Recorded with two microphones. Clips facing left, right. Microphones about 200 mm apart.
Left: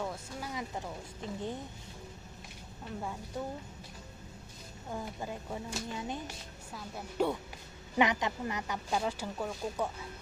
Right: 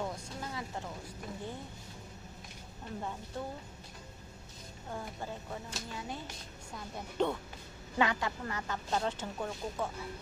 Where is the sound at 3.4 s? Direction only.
10° left (ahead or behind).